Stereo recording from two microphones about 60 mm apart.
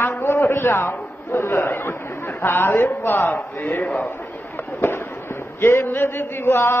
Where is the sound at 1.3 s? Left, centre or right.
Left.